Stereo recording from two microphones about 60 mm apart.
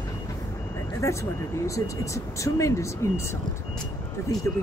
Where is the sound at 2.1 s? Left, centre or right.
Left.